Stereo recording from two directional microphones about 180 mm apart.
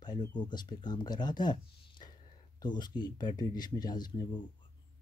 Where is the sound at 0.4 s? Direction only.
25° left (ahead or behind).